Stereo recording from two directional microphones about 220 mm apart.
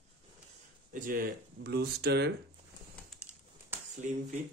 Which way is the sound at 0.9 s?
40° right (ahead or behind).